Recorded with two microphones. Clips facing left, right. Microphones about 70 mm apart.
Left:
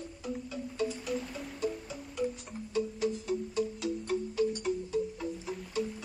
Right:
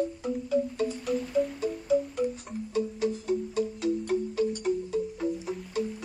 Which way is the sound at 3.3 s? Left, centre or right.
Right.